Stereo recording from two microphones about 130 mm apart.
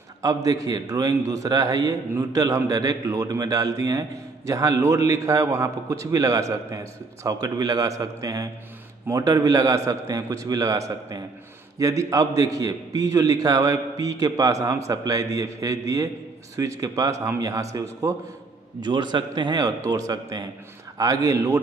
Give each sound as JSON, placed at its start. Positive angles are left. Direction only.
{"t": 0.2, "sound": "a man's voice", "side_deg": -25}